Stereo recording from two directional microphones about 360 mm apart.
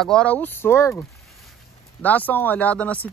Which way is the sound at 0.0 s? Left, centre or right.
Centre.